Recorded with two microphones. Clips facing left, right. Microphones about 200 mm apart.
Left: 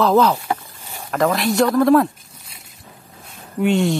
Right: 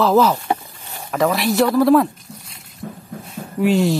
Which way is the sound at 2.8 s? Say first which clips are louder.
Right 15 dB; 65° right (ahead or behind).